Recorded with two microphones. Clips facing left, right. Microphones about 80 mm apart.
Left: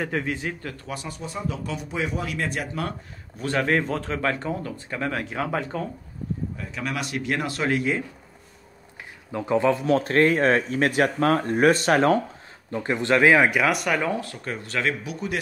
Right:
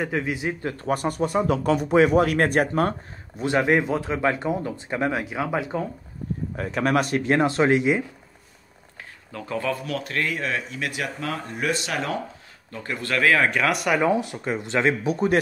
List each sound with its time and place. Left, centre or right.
0.0 s speech: centre
0.7 s speech: right
3.3 s speech: centre
5.2 s speech: centre
6.5 s speech: right
9.3 s speech: left
12.7 s speech: left
13.5 s speech: centre
14.1 s speech: centre